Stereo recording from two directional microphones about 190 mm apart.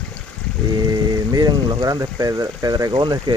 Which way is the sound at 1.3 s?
20° right (ahead or behind).